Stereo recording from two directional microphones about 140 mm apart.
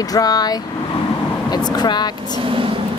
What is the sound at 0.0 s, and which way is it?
Speech, 25° left (ahead or behind).